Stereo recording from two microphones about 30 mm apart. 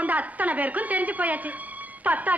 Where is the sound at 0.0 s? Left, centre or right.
Right.